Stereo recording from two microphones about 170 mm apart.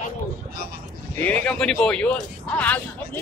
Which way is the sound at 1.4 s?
5° left (ahead or behind).